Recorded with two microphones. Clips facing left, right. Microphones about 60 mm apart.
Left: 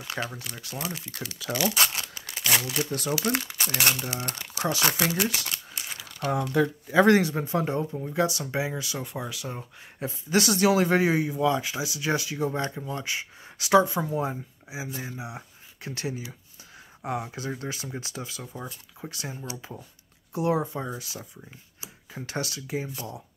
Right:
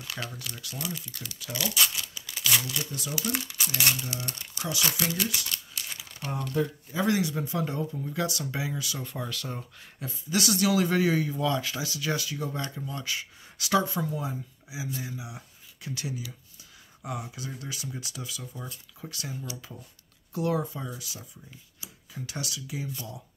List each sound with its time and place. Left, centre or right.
0.0 s speech: left
2.8 s speech: left
3.3 s speech: left
4.6 s speech: left
5.5 s crumpling: centre
6.2 s speech: left
7.1 s speech: left
9.0 s speech: centre
9.9 s speech: left
11.1 s speech: centre; by 22.8 s left